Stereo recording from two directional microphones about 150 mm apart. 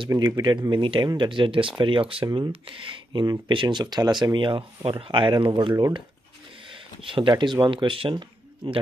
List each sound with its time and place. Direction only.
0.1 s speech: 30° right (ahead or behind)
7.1 s speech: 35° right (ahead or behind)